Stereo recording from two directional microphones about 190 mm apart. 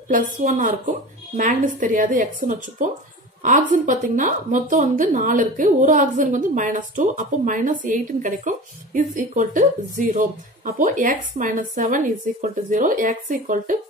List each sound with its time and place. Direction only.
0.1 s a woman's voice: 45° right (ahead or behind)